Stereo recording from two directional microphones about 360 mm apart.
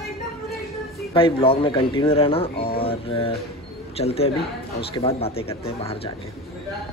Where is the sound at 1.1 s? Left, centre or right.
Centre.